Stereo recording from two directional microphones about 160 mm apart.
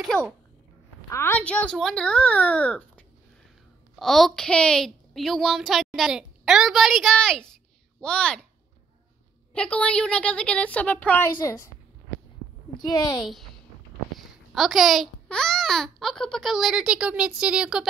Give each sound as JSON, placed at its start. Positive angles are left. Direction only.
{"t": 1.0, "sound": "a woman's voice", "side_deg": 15}
{"t": 9.5, "sound": "a woman's voice", "side_deg": 5}
{"t": 12.7, "sound": "a woman's voice", "side_deg": 25}
{"t": 13.2, "sound": "a woman's voice", "side_deg": 0}